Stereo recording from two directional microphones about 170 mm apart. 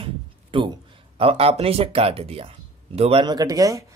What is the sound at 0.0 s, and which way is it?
Speech, 30° right (ahead or behind).